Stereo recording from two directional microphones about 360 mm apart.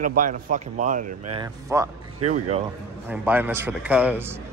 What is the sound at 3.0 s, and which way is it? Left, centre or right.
A man's voice, centre.